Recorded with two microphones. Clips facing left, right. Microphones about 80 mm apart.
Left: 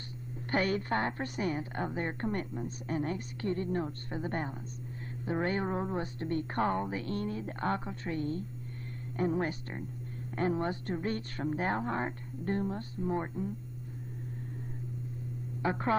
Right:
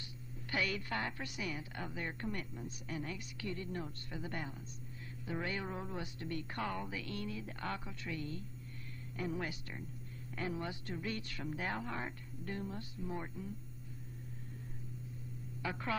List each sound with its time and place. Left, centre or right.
0.5 s a woman's voice: left
15.6 s a woman's voice: left